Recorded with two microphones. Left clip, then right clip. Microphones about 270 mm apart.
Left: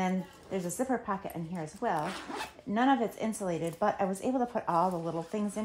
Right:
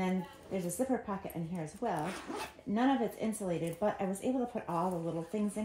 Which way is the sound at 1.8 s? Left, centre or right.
Centre.